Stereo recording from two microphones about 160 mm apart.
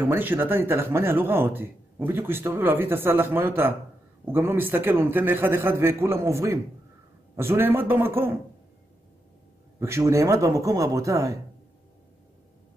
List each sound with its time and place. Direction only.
0.0 s speech: 10° right (ahead or behind)
9.8 s a man's voice: 15° right (ahead or behind)